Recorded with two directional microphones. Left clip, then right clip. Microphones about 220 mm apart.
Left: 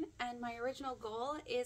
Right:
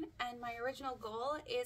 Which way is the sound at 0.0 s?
Centre (ahead or behind).